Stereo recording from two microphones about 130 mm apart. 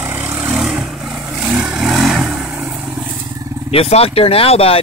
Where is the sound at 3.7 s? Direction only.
50° left (ahead or behind).